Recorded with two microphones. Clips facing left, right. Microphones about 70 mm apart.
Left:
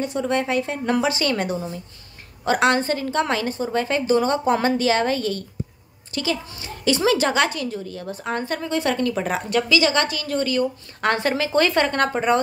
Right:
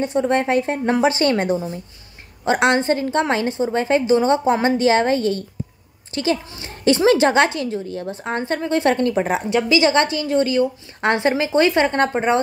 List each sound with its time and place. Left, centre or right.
0.0 s a woman's voice: right